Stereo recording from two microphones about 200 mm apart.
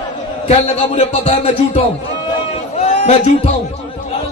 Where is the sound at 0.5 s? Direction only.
35° left (ahead or behind).